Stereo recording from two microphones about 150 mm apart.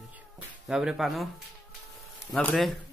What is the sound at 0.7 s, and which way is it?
Speech, 5° right (ahead or behind).